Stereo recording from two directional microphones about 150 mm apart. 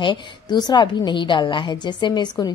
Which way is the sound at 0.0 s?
30° left (ahead or behind).